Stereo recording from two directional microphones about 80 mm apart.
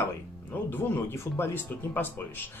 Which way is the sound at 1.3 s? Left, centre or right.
Left.